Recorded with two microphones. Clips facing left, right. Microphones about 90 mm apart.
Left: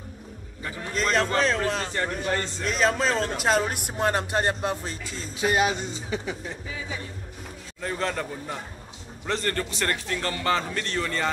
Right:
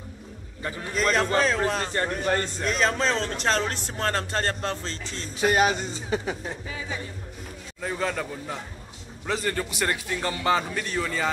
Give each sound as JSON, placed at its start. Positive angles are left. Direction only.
{"t": 0.9, "sound": "a man's voice", "side_deg": 0}
{"t": 2.0, "sound": "a man's voice", "side_deg": -40}
{"t": 2.6, "sound": "a man's voice", "side_deg": 0}
{"t": 5.4, "sound": "a man's voice", "side_deg": -40}
{"t": 7.8, "sound": "a man's voice", "side_deg": -5}